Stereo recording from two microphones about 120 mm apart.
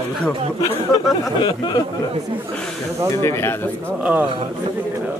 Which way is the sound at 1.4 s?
40° left (ahead or behind).